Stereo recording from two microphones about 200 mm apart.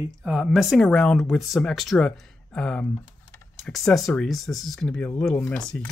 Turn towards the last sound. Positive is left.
turn(degrees=5)  # may be behind; listen again after turning